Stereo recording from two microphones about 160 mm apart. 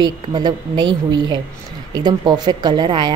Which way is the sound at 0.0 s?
25° right (ahead or behind).